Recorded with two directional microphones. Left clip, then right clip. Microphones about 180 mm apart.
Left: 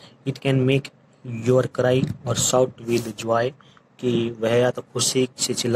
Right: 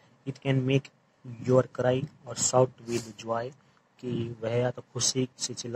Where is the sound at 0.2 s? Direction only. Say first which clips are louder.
Left 8 dB; 35° left (ahead or behind).